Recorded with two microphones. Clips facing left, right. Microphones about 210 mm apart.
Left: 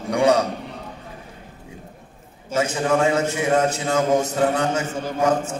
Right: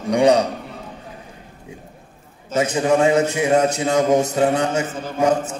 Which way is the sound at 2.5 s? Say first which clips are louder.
Right 3 dB; 15° right (ahead or behind).